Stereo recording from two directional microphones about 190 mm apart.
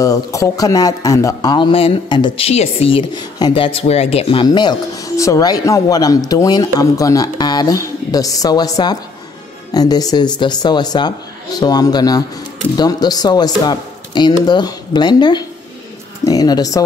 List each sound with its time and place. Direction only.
0.0 s speech: 15° left (ahead or behind)